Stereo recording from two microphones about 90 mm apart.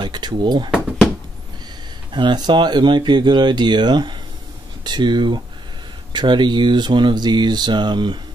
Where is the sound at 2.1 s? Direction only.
55° right (ahead or behind).